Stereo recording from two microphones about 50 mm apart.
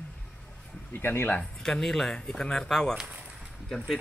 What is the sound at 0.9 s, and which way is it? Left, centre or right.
Speech, left.